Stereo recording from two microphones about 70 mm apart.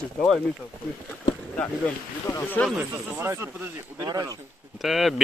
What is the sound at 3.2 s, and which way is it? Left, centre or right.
Speech, right.